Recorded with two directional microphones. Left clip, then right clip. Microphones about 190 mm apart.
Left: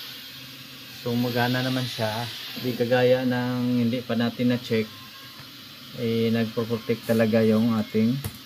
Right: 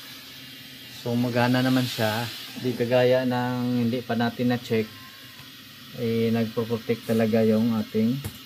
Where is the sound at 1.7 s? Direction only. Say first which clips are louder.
Right 3 dB; 15° right (ahead or behind).